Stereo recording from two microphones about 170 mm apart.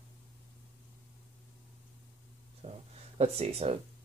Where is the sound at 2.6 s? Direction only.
35° right (ahead or behind).